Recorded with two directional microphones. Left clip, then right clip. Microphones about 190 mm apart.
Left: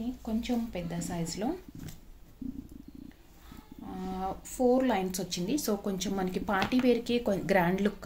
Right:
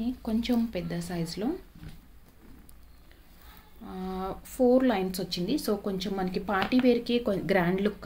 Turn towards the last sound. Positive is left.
turn(degrees=5)  # may be behind; listen again after turning